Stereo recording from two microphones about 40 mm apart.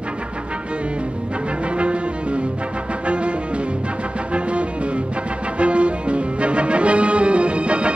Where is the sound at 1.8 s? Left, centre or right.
Right.